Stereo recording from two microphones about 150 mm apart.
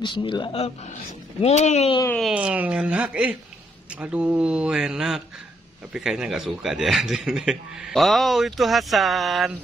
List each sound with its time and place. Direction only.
0.0 s speech: 30° left (ahead or behind); by 2.0 s 50° left (ahead or behind)
2.3 s speech: 10° right (ahead or behind)